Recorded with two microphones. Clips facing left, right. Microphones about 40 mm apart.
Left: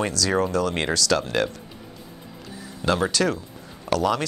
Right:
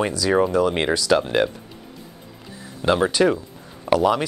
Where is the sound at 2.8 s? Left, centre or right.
Centre.